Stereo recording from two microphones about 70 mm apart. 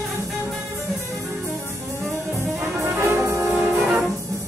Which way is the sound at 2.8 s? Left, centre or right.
Right.